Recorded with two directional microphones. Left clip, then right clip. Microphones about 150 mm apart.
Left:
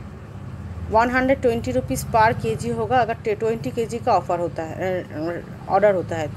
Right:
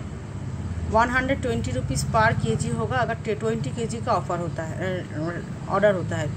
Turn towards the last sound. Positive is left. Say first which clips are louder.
# left 3 dB
turn(degrees=45)  # may be behind; listen again after turning